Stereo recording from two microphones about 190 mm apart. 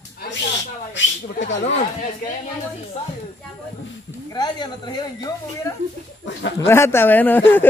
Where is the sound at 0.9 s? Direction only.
70° left (ahead or behind).